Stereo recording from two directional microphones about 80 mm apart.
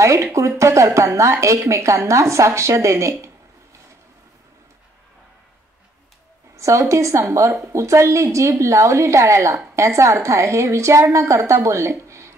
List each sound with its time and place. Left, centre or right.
0.0 s a woman's voice: right
6.5 s a woman's voice: right